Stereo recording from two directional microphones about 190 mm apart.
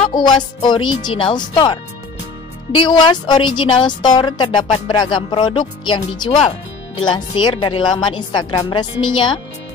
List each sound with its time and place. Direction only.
0.1 s a woman's voice: 20° left (ahead or behind)